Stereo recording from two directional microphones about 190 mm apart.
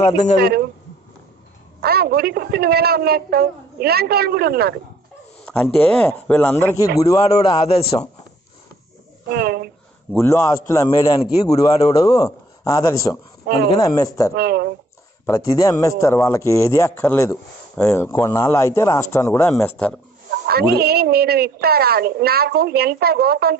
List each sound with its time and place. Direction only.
0.0 s a man's voice: 35° left (ahead or behind)
0.4 s speech: 55° right (ahead or behind)
1.8 s a woman's voice: 55° right (ahead or behind)
5.4 s a man's voice: 5° left (ahead or behind)
7.4 s a man's voice: 30° left (ahead or behind)
9.3 s a woman's voice: 55° right (ahead or behind)
10.1 s a man's voice: 15° left (ahead or behind)
14.3 s a woman's voice: 55° right (ahead or behind)
15.2 s a man's voice: 15° left (ahead or behind)
20.4 s a woman's voice: 55° right (ahead or behind)